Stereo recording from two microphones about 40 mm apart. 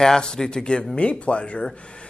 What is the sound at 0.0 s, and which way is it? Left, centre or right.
A man's voice, centre.